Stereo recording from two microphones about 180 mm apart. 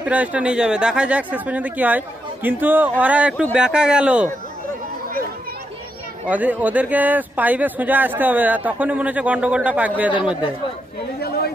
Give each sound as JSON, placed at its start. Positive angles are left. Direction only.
{"t": 0.0, "sound": "speech", "side_deg": -10}
{"t": 6.2, "sound": "speech", "side_deg": -10}
{"t": 11.1, "sound": "a sound", "side_deg": 60}